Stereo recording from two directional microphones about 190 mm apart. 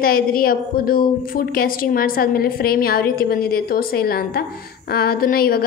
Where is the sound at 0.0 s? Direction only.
50° left (ahead or behind).